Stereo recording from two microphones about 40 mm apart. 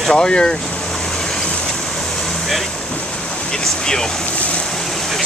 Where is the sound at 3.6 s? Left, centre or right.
Centre.